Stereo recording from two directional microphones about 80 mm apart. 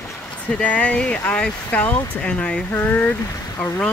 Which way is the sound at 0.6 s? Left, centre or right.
Centre.